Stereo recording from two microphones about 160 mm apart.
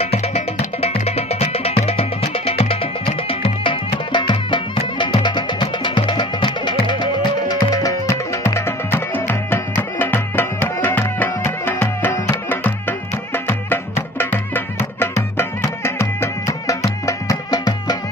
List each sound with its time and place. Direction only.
0.0 s music: 40° left (ahead or behind); by 17.9 s 25° left (ahead or behind)